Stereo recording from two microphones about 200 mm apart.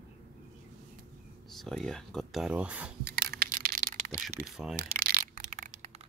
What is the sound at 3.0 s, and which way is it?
Crushing, 50° right (ahead or behind).